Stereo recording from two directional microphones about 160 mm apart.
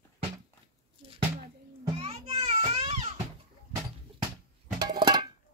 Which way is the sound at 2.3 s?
40° right (ahead or behind).